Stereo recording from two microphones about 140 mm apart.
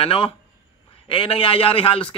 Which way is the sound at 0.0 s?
40° left (ahead or behind).